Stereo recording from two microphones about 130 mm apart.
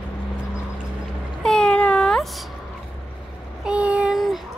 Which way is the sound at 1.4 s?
5° left (ahead or behind).